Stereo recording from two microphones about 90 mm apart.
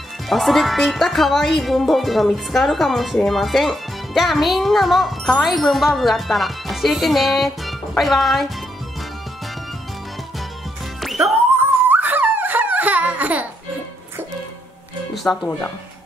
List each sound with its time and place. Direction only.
0.3 s speech: centre (ahead or behind)
11.0 s music: centre (ahead or behind)
11.9 s giggle: 20° right (ahead or behind)
15.3 s speech: 15° left (ahead or behind)